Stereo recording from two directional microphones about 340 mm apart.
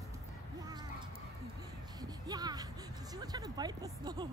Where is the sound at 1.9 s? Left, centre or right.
Centre.